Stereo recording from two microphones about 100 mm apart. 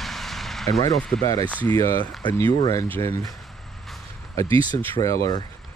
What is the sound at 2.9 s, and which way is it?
Speech, 30° left (ahead or behind).